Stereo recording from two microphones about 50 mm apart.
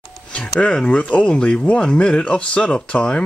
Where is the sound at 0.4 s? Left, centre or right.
Left.